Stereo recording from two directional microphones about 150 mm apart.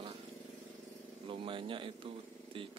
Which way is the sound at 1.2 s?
35° right (ahead or behind).